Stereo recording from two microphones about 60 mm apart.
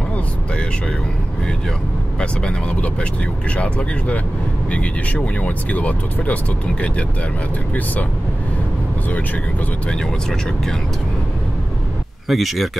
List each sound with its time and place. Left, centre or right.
2.1 s speech: centre
12.3 s speech: centre